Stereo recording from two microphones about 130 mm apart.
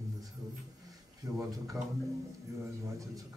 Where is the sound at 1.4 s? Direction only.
25° right (ahead or behind).